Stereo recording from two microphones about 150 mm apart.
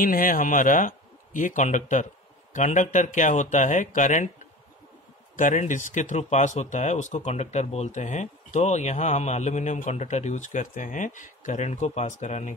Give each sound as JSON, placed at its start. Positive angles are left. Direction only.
{"t": 0.0, "sound": "speech", "side_deg": 70}
{"t": 5.3, "sound": "speech", "side_deg": 60}